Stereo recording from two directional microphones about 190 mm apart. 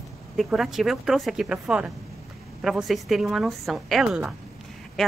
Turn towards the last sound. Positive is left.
turn(degrees=0)  # may be behind; listen again after turning